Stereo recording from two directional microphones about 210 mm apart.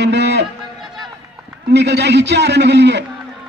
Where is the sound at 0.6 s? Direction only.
Centre (ahead or behind).